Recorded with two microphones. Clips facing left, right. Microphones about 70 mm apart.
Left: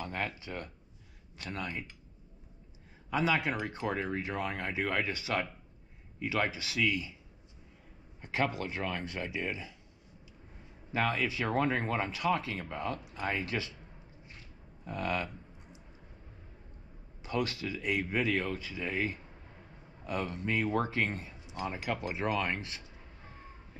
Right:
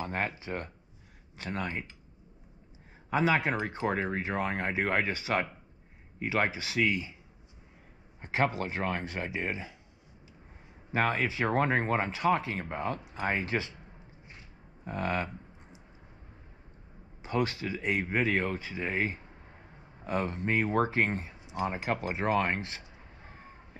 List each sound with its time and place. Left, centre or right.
0.0 s speech: right
3.1 s speech: right
8.2 s speech: right
10.9 s speech: right
14.9 s speech: right
17.2 s speech: right